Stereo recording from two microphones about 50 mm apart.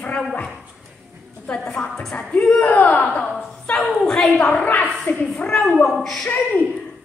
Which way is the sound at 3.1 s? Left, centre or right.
Left.